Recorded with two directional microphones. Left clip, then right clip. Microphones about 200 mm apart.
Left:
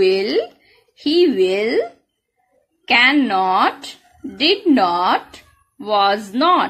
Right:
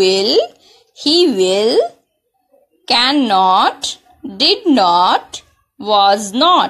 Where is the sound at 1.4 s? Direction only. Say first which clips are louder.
Right 4 dB; 5° right (ahead or behind).